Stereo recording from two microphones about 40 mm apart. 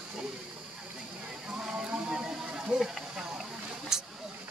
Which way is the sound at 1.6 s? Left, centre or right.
Right.